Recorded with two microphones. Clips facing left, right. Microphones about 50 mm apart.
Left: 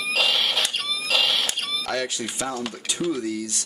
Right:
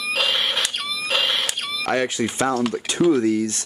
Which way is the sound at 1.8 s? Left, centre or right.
Right.